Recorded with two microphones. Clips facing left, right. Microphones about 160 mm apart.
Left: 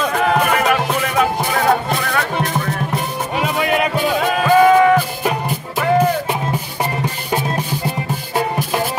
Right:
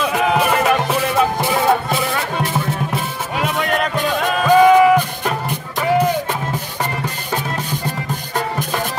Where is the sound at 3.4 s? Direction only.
5° left (ahead or behind).